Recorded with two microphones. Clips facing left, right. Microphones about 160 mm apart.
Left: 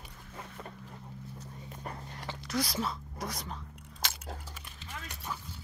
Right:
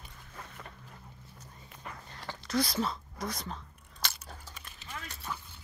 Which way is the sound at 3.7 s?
90° left.